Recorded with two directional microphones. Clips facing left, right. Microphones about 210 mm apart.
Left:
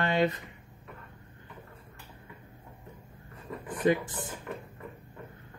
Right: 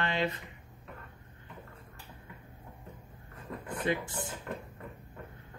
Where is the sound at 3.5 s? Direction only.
Centre (ahead or behind).